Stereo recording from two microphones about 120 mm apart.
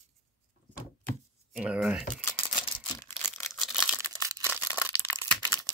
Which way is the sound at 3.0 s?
20° left (ahead or behind).